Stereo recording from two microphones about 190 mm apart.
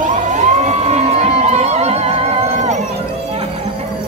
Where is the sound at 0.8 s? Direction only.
35° right (ahead or behind).